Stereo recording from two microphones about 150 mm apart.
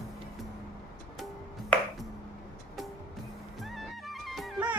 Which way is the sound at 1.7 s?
10° left (ahead or behind).